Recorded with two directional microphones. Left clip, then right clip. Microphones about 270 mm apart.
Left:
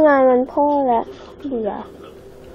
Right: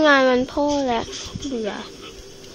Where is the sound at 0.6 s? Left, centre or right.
Right.